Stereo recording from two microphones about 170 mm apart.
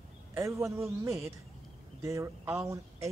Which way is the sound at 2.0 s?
15° right (ahead or behind).